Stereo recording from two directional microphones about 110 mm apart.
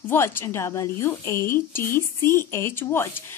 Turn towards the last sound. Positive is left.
turn(degrees=25)  # may be behind; listen again after turning